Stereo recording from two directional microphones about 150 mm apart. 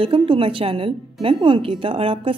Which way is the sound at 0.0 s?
35° right (ahead or behind).